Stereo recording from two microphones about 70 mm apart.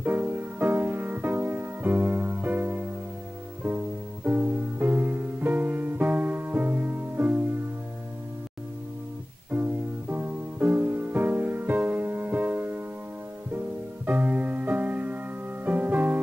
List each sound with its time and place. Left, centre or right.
0.0 s music: right
9.5 s music: right
14.0 s music: right